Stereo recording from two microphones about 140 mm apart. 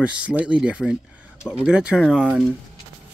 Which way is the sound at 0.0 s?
10° right (ahead or behind).